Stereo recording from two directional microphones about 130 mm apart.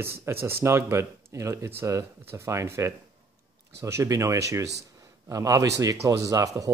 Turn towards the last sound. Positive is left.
turn(degrees=-25)  # may be behind; listen again after turning